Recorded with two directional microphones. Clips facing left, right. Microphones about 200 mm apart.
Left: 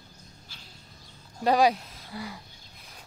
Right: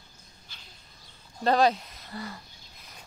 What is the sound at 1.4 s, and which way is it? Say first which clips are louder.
Speech: left 1 dB; 10° left (ahead or behind).